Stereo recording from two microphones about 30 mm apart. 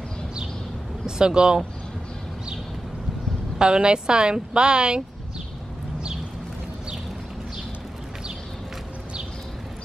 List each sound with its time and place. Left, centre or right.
1.0 s speech: right
3.5 s a woman's voice: right